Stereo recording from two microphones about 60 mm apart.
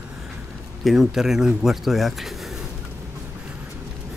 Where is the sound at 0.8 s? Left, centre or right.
Centre.